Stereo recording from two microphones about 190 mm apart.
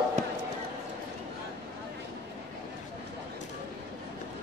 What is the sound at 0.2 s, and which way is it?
Basketball bounce, 40° right (ahead or behind).